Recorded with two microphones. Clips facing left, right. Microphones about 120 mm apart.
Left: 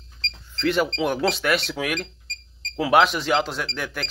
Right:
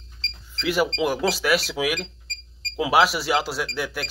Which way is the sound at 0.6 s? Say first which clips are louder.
Left 1 dB; 5° right (ahead or behind).